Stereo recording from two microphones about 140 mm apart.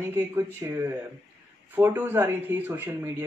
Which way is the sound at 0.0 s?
15° right (ahead or behind).